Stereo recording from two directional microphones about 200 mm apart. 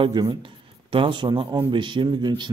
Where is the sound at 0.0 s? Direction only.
20° right (ahead or behind).